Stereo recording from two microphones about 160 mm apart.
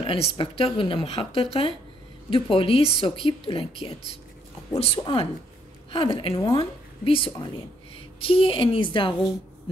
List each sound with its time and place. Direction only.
0.0 s speech: 35° left (ahead or behind)
4.7 s a woman's voice: 35° left (ahead or behind)